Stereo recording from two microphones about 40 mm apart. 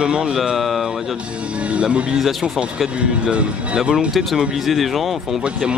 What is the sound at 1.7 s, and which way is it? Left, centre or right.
Speech, right.